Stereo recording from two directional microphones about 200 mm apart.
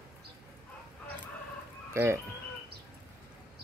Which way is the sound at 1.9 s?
15° right (ahead or behind).